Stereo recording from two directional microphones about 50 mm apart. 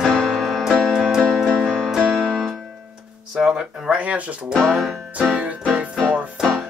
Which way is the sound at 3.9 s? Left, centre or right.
Right.